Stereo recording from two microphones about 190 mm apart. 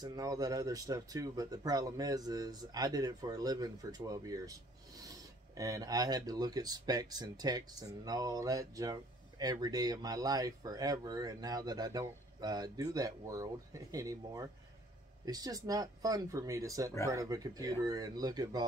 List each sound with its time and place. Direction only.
0.0 s speech: 20° right (ahead or behind)
5.6 s speech: 20° right (ahead or behind)